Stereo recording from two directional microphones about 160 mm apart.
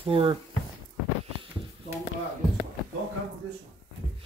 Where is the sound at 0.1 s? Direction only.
35° right (ahead or behind).